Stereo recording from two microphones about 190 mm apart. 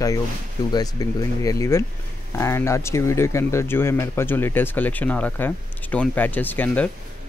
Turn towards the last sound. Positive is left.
turn(degrees=10)  # may be behind; listen again after turning